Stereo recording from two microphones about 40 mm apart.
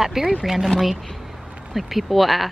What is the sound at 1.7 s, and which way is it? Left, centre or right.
Speech, centre.